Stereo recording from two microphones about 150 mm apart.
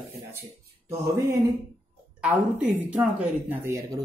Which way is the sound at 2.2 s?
10° right (ahead or behind).